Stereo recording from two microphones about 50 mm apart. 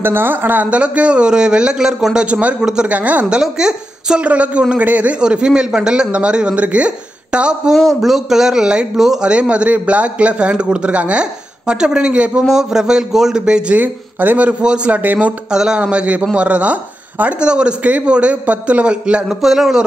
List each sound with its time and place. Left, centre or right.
0.0 s speech: right
0.7 s a man's voice: right
2.9 s a man's voice: right
3.3 s a woman's voice: centre
4.2 s a man's voice: right
5.2 s a man's voice: centre
7.7 s a man's voice: centre
13.7 s speech: right
15.5 s speech: centre
15.8 s a man's voice: right
17.4 s a man's voice: centre
19.2 s speech: centre